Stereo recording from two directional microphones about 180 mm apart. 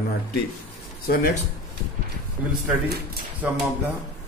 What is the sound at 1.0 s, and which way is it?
Speech, 55° left (ahead or behind).